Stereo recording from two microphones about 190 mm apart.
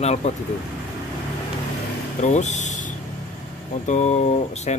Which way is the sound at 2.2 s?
35° left (ahead or behind).